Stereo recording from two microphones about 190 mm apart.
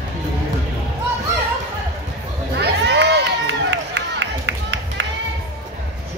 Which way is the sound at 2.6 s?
60° right (ahead or behind).